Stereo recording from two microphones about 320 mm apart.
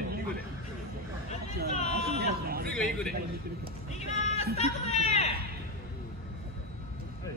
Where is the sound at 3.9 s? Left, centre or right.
Left.